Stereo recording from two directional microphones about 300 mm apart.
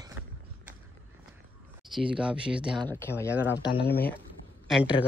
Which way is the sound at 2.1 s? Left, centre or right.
Centre.